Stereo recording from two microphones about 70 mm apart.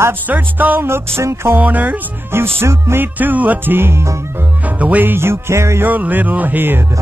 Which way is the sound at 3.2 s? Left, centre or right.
Right.